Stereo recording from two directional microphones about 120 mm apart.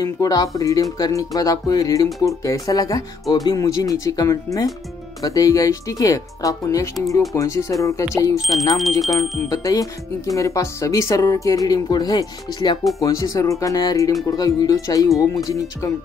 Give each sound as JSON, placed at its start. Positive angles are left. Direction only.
{"t": 0.0, "sound": "speech", "side_deg": 30}
{"t": 9.0, "sound": "speech", "side_deg": 0}
{"t": 9.5, "sound": "speech", "side_deg": 30}